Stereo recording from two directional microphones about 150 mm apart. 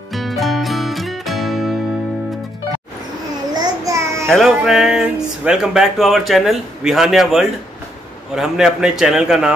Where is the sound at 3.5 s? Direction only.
25° right (ahead or behind).